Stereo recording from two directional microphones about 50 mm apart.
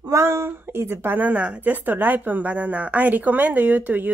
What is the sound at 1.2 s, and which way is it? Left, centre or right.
A woman's voice, right.